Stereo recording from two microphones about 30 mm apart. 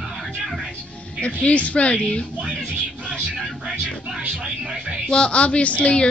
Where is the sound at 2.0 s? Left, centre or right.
Left.